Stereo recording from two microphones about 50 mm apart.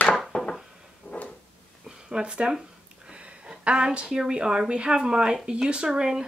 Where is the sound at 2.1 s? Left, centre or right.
Centre.